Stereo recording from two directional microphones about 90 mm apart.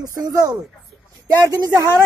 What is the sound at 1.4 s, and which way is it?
Speech, 45° right (ahead or behind).